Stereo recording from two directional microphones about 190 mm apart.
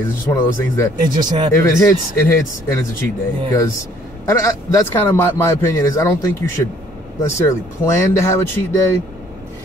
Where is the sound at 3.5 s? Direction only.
15° left (ahead or behind).